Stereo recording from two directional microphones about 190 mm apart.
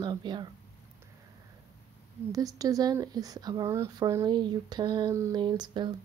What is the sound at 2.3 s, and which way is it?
Speech, 20° right (ahead or behind).